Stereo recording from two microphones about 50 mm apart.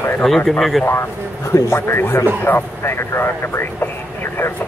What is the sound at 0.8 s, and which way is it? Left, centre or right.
Speech, left.